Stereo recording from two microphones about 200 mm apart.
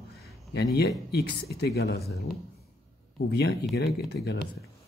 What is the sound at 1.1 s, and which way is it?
Speech, 50° left (ahead or behind).